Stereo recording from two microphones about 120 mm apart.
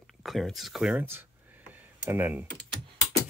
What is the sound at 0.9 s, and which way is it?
Computer keyboard, 15° right (ahead or behind).